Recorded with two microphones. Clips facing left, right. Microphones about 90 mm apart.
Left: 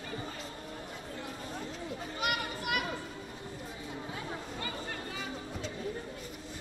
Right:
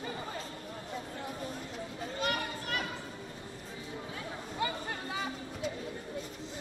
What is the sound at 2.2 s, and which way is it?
Children playing, 15° left (ahead or behind).